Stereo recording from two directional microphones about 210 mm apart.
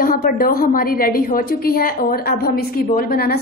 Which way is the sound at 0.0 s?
45° left (ahead or behind).